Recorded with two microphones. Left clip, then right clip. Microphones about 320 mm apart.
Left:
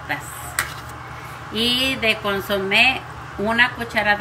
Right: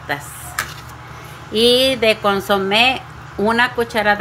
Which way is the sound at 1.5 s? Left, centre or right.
Centre.